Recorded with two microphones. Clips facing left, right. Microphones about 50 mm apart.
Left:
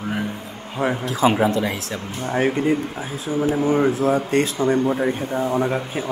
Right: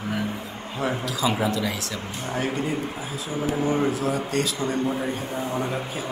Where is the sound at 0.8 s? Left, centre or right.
Left.